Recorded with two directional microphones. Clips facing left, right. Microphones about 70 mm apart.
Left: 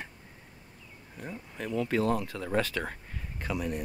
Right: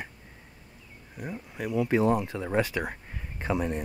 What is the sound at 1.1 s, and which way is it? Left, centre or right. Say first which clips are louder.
Speech: right 3 dB; centre.